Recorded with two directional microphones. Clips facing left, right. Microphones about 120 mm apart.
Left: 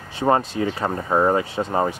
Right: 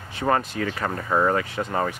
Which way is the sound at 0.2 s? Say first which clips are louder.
Left 4 dB; 25° left (ahead or behind).